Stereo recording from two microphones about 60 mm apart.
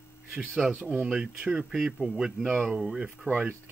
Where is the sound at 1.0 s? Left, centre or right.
Centre.